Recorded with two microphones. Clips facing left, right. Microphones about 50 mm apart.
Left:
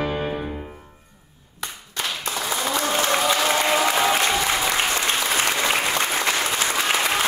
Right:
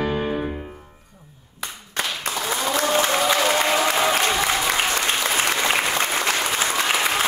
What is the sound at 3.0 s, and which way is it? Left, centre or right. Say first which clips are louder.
Applause: even; centre.